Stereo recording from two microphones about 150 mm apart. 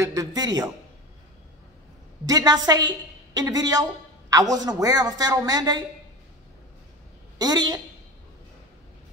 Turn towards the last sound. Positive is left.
turn(degrees=-25)  # may be behind; listen again after turning